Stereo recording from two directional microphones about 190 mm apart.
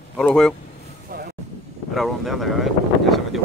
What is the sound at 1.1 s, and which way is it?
Vehicle, 55° right (ahead or behind).